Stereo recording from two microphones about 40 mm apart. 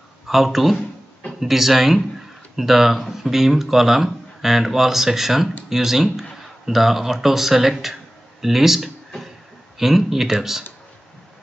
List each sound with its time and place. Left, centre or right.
0.3 s speech: centre